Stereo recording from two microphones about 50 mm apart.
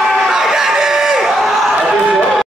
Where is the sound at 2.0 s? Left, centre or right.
Right.